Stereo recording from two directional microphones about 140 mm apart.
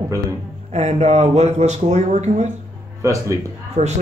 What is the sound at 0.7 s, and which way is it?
Speech, 55° right (ahead or behind).